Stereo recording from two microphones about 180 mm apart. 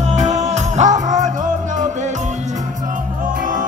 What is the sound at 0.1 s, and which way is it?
Music, 40° right (ahead or behind).